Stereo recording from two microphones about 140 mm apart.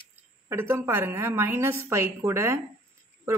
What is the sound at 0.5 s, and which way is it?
A woman's voice, 15° right (ahead or behind).